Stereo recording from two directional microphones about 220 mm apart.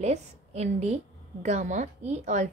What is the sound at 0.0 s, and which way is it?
A woman's voice, 30° right (ahead or behind).